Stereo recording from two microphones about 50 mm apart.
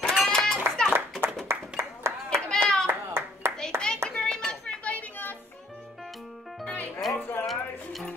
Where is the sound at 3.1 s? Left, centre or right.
Right.